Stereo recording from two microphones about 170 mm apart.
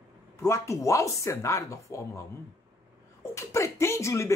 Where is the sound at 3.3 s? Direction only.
15° left (ahead or behind).